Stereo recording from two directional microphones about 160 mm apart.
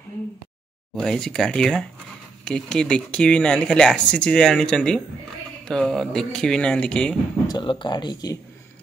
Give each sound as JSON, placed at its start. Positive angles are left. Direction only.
{"t": 0.9, "sound": "speech", "side_deg": 5}
{"t": 7.4, "sound": "speech", "side_deg": 30}